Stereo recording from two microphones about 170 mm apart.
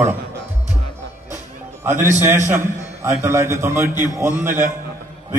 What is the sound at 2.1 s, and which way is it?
A man's voice, 15° right (ahead or behind).